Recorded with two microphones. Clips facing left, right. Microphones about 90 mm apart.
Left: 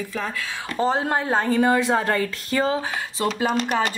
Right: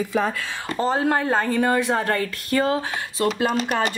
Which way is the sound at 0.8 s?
5° left (ahead or behind).